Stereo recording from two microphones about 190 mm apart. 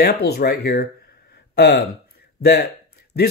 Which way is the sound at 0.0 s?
55° left (ahead or behind).